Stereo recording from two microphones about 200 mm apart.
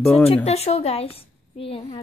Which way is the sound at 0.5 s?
30° left (ahead or behind).